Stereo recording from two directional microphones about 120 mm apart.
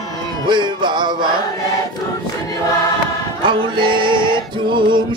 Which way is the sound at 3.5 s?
40° right (ahead or behind).